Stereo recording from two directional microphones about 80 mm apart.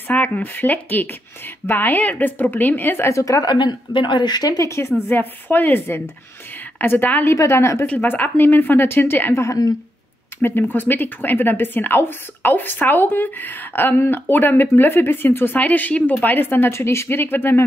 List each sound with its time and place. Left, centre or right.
0.1 s speech: centre; by 3.4 s left
3.4 s speech: left
4.6 s a woman's voice: left
5.5 s speech: left
7.3 s a woman's voice: left
7.8 s speech: left